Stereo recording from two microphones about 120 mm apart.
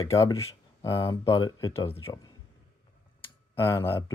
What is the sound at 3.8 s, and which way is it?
Speech, 25° left (ahead or behind).